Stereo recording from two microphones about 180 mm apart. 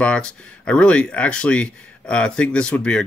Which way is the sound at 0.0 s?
5° left (ahead or behind).